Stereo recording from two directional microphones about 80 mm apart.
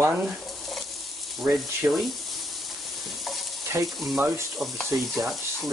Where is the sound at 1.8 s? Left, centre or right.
Right.